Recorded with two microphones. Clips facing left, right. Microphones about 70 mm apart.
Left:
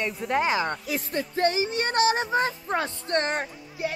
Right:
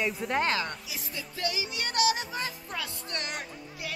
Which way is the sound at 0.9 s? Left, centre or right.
Left.